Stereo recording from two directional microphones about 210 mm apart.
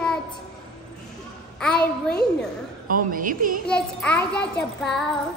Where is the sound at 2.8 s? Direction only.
40° right (ahead or behind).